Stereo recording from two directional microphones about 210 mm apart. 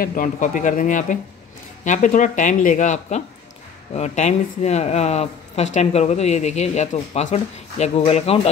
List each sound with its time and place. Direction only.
0.0 s speech: 40° left (ahead or behind)